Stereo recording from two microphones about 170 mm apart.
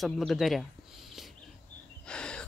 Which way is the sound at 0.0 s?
Centre (ahead or behind).